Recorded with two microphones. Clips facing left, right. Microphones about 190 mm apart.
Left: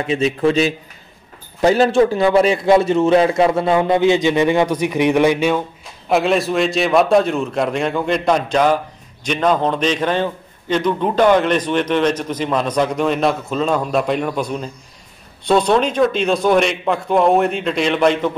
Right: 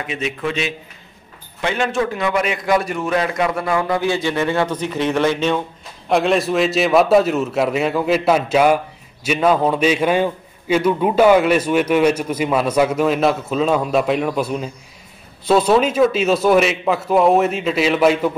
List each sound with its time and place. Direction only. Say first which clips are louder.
0.0 s a man's voice: left 7 dB; 30° left (ahead or behind); by 5.6 s 10° left (ahead or behind)
6.0 s a man's voice: even; centre (ahead or behind)